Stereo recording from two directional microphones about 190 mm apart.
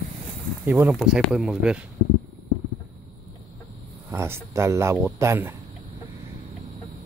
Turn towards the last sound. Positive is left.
turn(degrees=-15)  # may be behind; listen again after turning